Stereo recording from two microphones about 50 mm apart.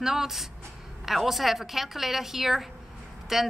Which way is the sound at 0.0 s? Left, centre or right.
Centre.